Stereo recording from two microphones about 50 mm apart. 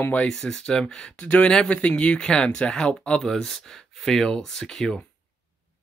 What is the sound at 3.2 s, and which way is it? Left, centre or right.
Speech, centre.